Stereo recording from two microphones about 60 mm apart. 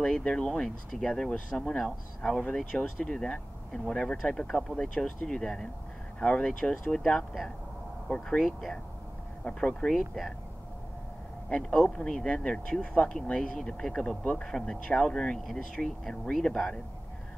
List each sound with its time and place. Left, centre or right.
0.0 s speech: centre
2.8 s speech: centre
8.5 s speech: centre
9.4 s speech: centre
9.9 s speech: centre
11.4 s speech: centre